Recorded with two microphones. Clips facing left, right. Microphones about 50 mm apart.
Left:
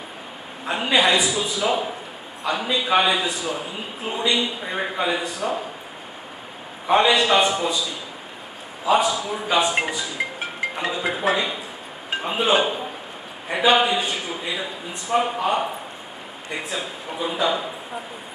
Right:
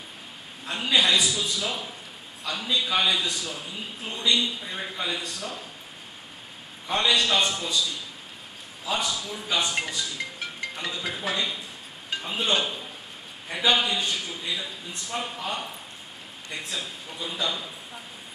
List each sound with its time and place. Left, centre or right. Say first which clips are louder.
0.7 s a man's voice: left 4 dB; centre
6.9 s a man's voice: left 7 dB; centre
10.1 s music: left 7 dB; left
10.8 s a man's voice: left 8 dB; left
11.3 s a man's voice: left 5 dB; centre
12.1 s chink: left 6 dB; left
12.5 s a man's voice: left 7 dB; left
16.5 s a man's voice: left 5 dB; centre